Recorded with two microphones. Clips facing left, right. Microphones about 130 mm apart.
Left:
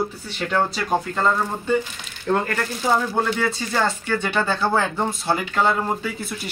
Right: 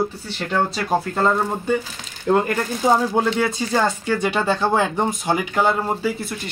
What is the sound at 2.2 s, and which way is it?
Speech, 15° right (ahead or behind).